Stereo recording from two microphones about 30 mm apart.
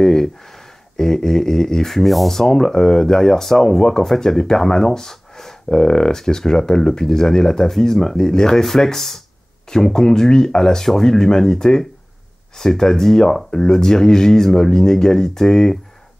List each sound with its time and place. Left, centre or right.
0.0 s a sound: centre
1.9 s speech: centre
2.3 s speech: centre